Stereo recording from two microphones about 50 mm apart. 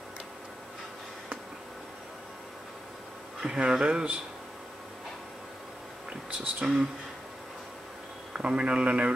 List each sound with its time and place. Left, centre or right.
3.4 s speech: centre
6.6 s speech: centre
8.4 s speech: centre